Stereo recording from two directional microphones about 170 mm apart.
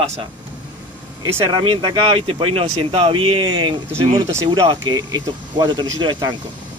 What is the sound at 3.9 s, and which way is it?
Speech, 15° right (ahead or behind).